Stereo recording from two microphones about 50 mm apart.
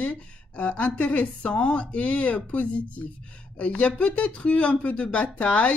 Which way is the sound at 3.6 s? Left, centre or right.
Left.